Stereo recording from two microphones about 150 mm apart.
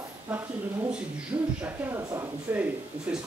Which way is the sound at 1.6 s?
15° right (ahead or behind).